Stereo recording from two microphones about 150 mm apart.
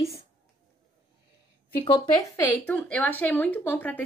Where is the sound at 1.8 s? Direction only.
30° left (ahead or behind).